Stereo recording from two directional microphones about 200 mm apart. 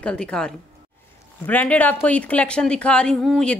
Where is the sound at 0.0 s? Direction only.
5° left (ahead or behind).